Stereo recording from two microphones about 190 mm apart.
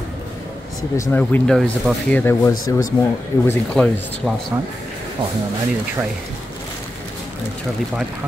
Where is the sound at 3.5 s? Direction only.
5° left (ahead or behind).